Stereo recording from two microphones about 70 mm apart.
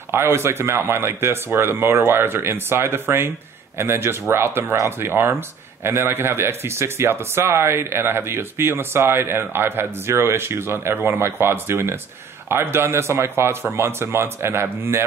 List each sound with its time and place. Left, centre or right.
0.1 s speech: right